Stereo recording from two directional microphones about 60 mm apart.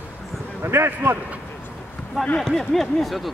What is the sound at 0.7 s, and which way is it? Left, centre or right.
Speech, right.